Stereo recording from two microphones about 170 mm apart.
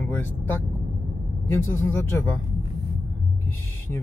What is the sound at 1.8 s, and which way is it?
Speech, 10° left (ahead or behind).